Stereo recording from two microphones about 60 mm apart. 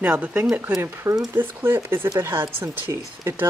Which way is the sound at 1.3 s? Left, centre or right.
Right.